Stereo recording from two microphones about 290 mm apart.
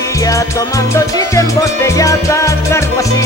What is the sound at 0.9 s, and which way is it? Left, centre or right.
Music, centre.